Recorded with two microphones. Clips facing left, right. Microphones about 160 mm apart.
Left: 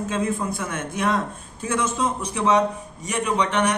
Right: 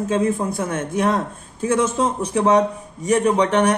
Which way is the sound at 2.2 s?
45° right (ahead or behind).